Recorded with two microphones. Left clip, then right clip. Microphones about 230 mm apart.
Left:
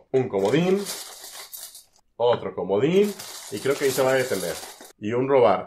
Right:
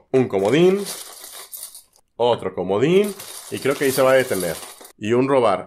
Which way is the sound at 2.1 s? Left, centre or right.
Right.